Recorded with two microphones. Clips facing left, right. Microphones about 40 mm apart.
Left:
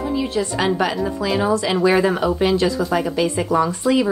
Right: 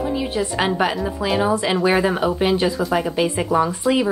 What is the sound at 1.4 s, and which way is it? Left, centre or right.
A woman's voice, centre.